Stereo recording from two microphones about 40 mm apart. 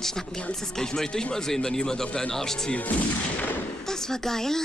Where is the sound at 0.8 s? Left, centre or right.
Centre.